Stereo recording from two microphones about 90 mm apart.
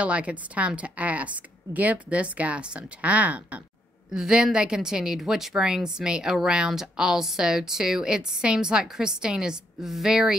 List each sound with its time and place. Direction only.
0.0 s a woman's voice: 15° right (ahead or behind)